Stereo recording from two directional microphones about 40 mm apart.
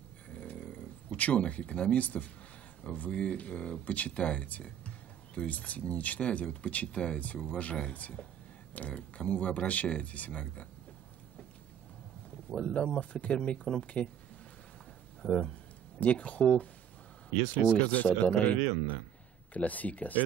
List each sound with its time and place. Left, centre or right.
0.3 s snoring: left
0.7 s speech: left
2.0 s speech: left
4.2 s a sound: left
5.5 s speech: left
7.2 s speech: left
12.7 s speech: left
13.5 s speech: left
15.2 s speech: left
16.0 s speech: left
17.6 s speech: left